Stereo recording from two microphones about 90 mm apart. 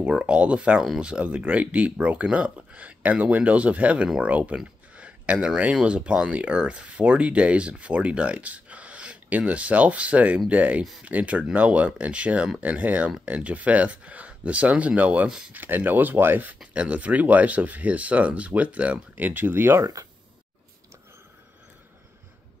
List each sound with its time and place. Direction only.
0.0 s speech: 10° right (ahead or behind)
15.5 s speech: 20° right (ahead or behind)
19.8 s speech: 40° right (ahead or behind)